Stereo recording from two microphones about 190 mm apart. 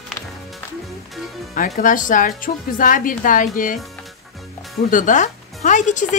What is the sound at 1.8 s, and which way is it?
Speech, 45° left (ahead or behind).